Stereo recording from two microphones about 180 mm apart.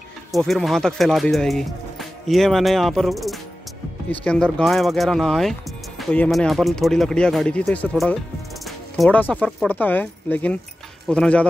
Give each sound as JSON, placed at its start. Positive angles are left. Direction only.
{"t": 0.3, "sound": "speech", "side_deg": 0}